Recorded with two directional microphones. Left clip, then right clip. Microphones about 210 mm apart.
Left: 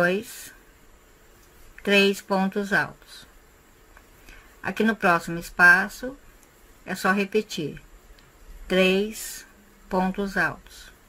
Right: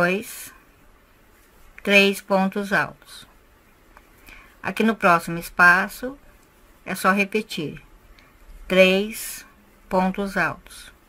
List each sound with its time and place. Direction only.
0.0 s speech: 15° right (ahead or behind)
1.8 s speech: 15° right (ahead or behind)
4.3 s speech: 15° right (ahead or behind)